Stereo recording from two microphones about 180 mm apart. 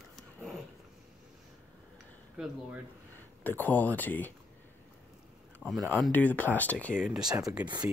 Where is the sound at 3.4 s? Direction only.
10° left (ahead or behind).